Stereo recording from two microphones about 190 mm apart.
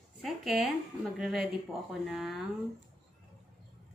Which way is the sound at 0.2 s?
Centre (ahead or behind).